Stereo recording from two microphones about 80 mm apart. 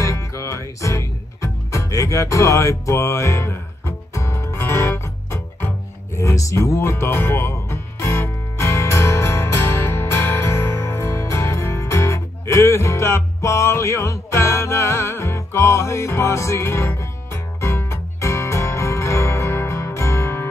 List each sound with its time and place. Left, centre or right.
0.0 s music: left